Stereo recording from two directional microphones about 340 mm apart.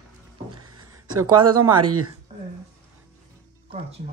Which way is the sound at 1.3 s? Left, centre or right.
Centre.